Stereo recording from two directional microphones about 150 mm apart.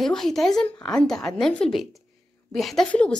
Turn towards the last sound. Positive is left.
turn(degrees=10)  # may be behind; listen again after turning